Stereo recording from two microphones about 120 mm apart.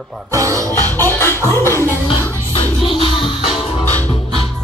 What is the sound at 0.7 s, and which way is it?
Music, 15° left (ahead or behind).